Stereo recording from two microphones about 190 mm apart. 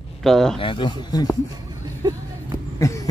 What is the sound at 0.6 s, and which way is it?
Speech, 25° left (ahead or behind).